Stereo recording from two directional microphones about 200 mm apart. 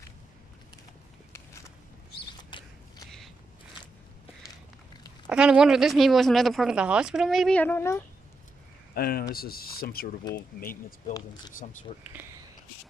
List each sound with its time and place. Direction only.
2.5 s scissors: 25° left (ahead or behind)
5.2 s speech: 5° right (ahead or behind); by 8.0 s 10° left (ahead or behind)
8.9 s speech: 50° left (ahead or behind)
12.0 s speech: 10° right (ahead or behind)